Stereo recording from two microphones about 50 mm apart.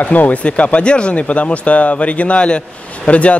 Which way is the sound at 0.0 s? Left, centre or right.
Left.